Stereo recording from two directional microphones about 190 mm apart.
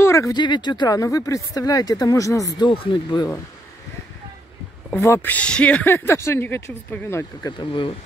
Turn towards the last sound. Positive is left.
turn(degrees=25)  # may be behind; listen again after turning